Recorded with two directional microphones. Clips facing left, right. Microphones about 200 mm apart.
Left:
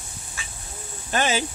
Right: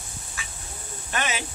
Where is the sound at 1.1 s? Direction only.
30° left (ahead or behind).